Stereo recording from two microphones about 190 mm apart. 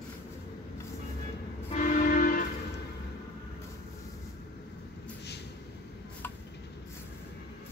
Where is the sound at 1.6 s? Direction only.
40° left (ahead or behind).